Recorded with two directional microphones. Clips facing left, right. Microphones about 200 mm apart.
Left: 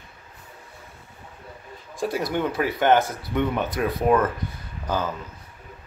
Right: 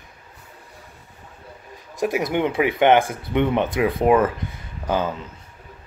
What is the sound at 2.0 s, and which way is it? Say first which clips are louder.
Speech: right 4 dB; 20° right (ahead or behind).